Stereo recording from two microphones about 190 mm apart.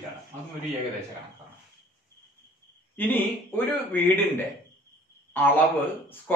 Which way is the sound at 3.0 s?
10° left (ahead or behind).